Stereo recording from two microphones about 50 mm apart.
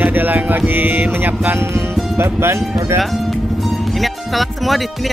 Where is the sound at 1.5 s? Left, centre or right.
Right.